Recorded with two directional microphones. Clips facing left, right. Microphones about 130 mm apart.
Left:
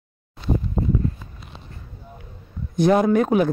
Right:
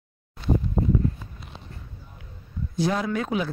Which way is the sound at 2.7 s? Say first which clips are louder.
Left 9 dB; 55° left (ahead or behind).